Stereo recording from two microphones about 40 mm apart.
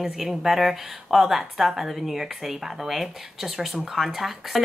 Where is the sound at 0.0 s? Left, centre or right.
Centre.